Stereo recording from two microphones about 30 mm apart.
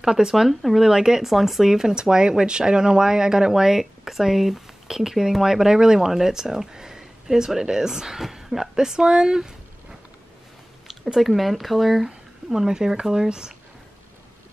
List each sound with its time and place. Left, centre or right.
0.0 s speech: right
0.5 s speech: centre
0.8 s speech: centre
1.2 s speech: centre
2.0 s speech: right
11.1 s speech: centre; by 13.6 s right